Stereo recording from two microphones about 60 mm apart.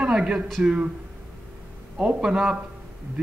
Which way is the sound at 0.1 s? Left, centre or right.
Centre.